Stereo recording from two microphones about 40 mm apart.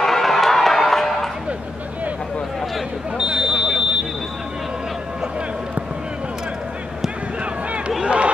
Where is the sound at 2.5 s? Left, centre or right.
Centre.